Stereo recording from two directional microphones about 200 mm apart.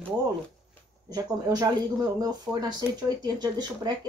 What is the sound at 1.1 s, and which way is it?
Speech, 20° right (ahead or behind).